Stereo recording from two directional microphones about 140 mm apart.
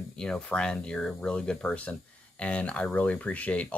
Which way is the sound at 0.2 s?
5° left (ahead or behind).